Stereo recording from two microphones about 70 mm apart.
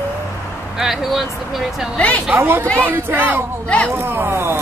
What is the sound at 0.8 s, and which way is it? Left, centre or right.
Speech, centre.